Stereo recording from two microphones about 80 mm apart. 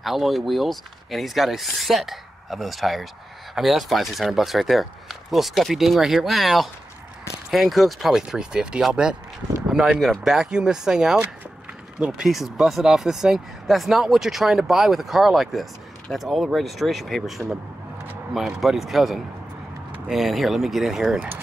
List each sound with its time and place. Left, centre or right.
0.0 s speech: centre